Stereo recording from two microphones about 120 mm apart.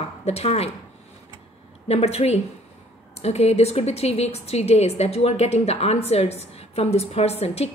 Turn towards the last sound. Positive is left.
turn(degrees=60)  # may be behind; listen again after turning